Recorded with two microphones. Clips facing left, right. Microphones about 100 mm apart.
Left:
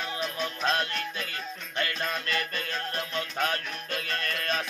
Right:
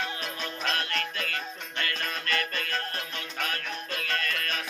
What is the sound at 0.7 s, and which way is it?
Music, 25° left (ahead or behind).